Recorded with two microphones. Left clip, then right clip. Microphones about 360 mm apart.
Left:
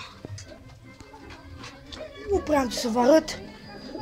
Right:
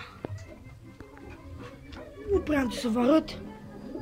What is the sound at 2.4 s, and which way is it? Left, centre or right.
A woman's voice, centre.